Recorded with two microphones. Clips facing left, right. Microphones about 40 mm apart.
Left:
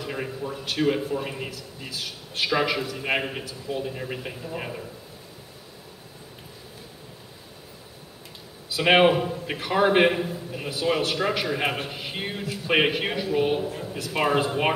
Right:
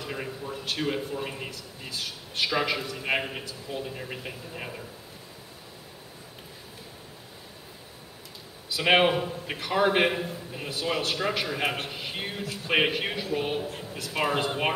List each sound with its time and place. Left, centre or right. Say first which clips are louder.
0.0 s a man's voice: left 4 dB; centre
8.7 s a man's voice: left 3 dB; centre